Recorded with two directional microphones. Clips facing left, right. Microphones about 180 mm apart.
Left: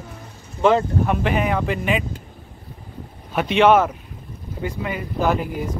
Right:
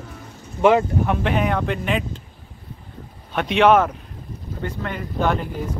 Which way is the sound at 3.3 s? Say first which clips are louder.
Left 1 dB; centre (ahead or behind).